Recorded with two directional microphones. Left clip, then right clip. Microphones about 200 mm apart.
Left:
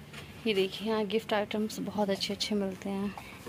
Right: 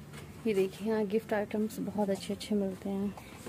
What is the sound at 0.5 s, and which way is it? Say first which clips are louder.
A woman's voice: left 1 dB; 15° right (ahead or behind).